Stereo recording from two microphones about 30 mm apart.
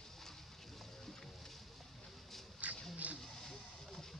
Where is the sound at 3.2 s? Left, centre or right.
Centre.